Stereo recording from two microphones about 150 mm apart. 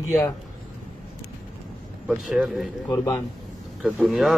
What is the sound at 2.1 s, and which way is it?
Speech, 5° right (ahead or behind).